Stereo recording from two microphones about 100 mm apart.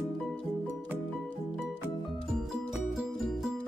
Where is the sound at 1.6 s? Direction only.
Centre (ahead or behind).